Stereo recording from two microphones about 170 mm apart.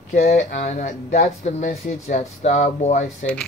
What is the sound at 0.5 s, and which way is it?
Speech, 45° left (ahead or behind).